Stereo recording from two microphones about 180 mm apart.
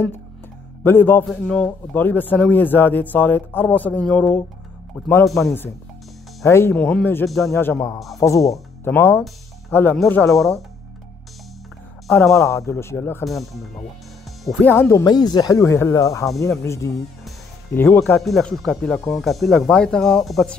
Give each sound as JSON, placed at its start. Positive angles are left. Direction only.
{"t": 0.8, "sound": "speech", "side_deg": 10}
{"t": 6.4, "sound": "speech", "side_deg": 15}
{"t": 7.5, "sound": "speech", "side_deg": 10}
{"t": 12.1, "sound": "speech", "side_deg": 10}
{"t": 13.2, "sound": "speech", "side_deg": 0}
{"t": 18.2, "sound": "speech", "side_deg": 0}